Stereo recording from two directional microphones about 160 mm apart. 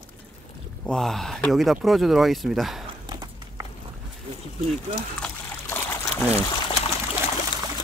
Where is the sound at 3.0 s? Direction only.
25° right (ahead or behind).